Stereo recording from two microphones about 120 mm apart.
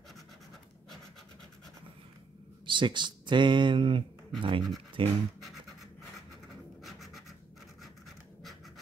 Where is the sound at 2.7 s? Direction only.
40° right (ahead or behind).